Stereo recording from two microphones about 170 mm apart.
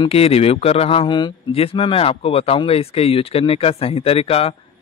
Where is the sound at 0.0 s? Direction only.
35° left (ahead or behind).